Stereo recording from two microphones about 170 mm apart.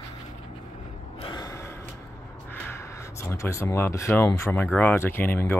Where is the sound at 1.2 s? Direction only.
25° left (ahead or behind).